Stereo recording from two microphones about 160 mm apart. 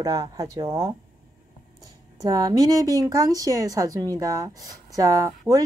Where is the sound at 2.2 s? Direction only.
25° right (ahead or behind).